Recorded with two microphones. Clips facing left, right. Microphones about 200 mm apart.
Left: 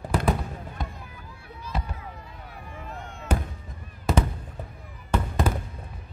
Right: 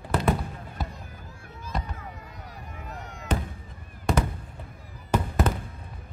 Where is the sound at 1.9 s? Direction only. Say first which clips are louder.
Even; 40° right (ahead or behind).